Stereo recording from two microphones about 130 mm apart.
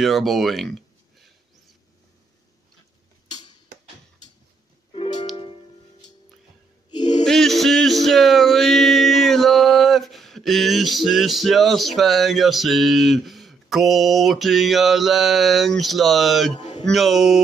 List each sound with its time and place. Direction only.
0.0 s speech: centre (ahead or behind)
7.2 s male singing: centre (ahead or behind)
16.5 s a sound: 35° left (ahead or behind)
16.8 s speech: centre (ahead or behind)